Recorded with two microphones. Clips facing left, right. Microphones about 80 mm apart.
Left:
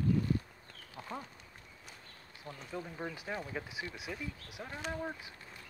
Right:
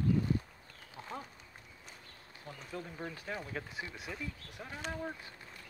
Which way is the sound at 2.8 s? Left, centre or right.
Centre.